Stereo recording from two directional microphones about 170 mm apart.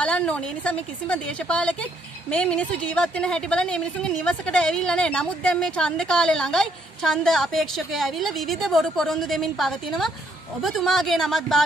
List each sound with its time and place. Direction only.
0.0 s a woman's voice: 5° left (ahead or behind)